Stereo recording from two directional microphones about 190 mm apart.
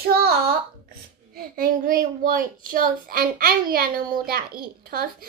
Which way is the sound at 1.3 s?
50° right (ahead or behind).